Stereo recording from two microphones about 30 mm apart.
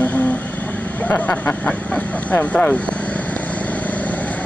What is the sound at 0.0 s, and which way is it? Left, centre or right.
Vehicle, left.